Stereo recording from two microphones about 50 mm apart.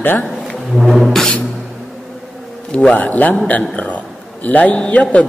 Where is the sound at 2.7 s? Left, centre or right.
Left.